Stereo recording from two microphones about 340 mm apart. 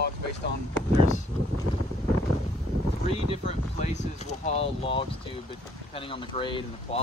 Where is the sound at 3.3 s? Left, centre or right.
Centre.